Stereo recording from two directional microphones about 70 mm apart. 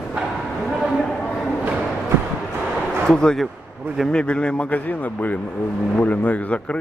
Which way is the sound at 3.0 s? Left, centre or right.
Centre.